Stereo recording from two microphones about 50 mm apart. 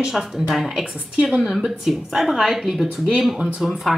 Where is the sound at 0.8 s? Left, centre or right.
Centre.